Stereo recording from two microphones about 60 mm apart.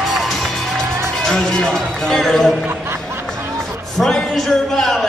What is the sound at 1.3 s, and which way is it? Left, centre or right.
Speech, centre.